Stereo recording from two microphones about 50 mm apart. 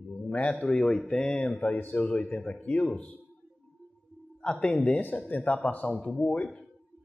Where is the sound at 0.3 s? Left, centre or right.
Left.